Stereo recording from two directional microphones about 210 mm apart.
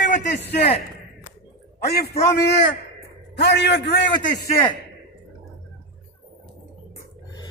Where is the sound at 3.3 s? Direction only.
55° left (ahead or behind).